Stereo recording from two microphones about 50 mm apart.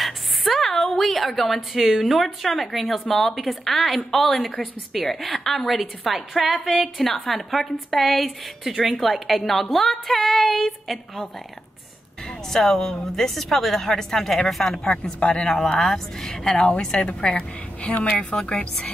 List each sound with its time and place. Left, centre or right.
0.0 s a sound: centre
0.9 s a woman's voice: centre
12.3 s a woman's voice: centre; by 15.6 s left
15.6 s a woman's voice: centre
17.3 s a woman's voice: left